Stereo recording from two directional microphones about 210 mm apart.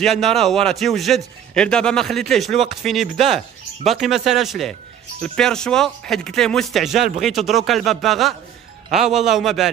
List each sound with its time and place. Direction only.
0.0 s speech: centre (ahead or behind)